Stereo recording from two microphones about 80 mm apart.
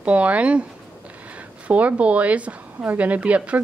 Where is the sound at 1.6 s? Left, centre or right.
Centre.